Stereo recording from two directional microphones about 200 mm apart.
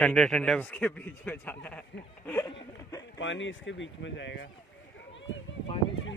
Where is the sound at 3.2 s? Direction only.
70° left (ahead or behind).